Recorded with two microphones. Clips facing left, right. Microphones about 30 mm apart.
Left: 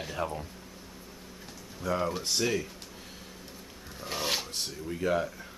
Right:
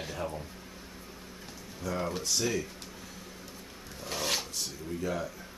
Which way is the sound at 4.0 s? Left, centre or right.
Centre.